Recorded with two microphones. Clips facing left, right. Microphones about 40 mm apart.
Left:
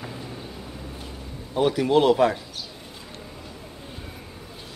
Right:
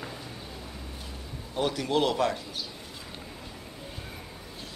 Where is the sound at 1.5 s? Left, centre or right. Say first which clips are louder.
Left 7 dB; centre.